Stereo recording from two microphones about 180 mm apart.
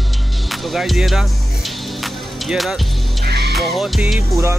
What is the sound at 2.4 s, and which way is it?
Music, centre (ahead or behind).